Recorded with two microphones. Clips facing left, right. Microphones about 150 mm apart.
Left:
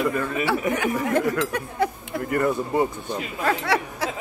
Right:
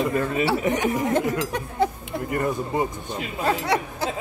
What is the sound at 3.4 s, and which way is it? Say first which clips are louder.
Speech: even; 25° right (ahead or behind).